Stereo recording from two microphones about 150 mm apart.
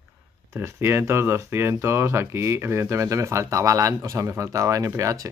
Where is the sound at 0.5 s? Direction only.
15° right (ahead or behind).